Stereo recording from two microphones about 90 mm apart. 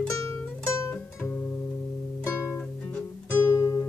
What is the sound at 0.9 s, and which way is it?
Guitar, 15° left (ahead or behind).